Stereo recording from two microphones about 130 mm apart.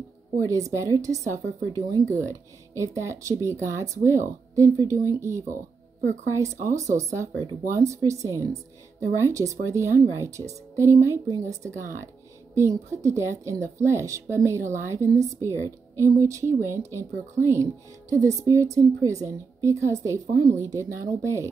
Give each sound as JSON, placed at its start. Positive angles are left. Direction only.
{"t": 0.4, "sound": "speech", "side_deg": -25}
{"t": 7.0, "sound": "speech", "side_deg": -25}